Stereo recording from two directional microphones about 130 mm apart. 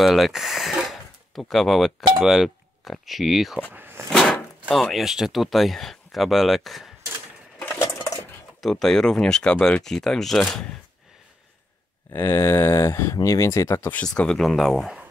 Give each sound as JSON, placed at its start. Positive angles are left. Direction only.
{"t": 0.0, "sound": "speech", "side_deg": 0}
{"t": 3.7, "sound": "a sound", "side_deg": -15}
{"t": 4.1, "sound": "speech", "side_deg": 5}
{"t": 8.5, "sound": "speech", "side_deg": 0}
{"t": 12.1, "sound": "speech", "side_deg": 15}
{"t": 14.0, "sound": "speech", "side_deg": 5}